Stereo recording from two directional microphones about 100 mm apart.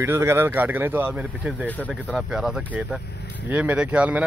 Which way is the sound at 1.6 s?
15° left (ahead or behind).